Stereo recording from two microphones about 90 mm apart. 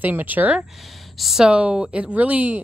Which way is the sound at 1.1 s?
5° right (ahead or behind).